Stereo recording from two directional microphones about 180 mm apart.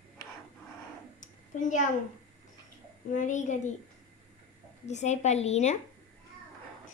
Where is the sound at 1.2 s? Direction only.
45° left (ahead or behind).